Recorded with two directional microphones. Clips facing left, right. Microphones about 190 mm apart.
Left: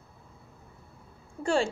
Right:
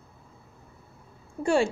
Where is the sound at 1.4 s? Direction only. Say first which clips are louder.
Right 3 dB; 15° right (ahead or behind).